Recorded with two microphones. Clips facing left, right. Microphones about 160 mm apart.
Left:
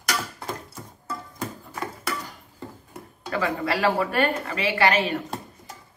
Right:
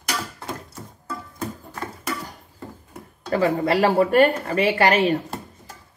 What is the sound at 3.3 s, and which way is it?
A woman's voice, 35° right (ahead or behind).